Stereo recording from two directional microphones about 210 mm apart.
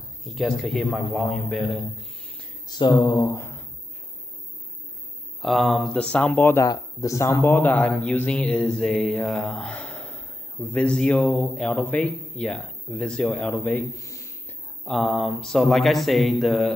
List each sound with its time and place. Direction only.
0.2 s speech: centre (ahead or behind)
2.7 s speech: 20° left (ahead or behind)
5.4 s speech: centre (ahead or behind)
8.3 s a sound: 5° left (ahead or behind)
14.9 s speech: centre (ahead or behind)